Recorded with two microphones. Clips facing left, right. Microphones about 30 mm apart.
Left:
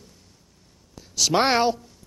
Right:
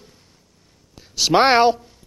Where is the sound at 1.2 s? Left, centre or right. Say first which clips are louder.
Right 6 dB; right.